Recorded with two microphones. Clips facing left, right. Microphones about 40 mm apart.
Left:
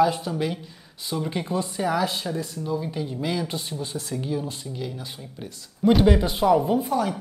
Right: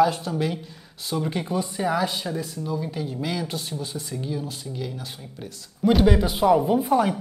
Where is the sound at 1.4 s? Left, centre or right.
Centre.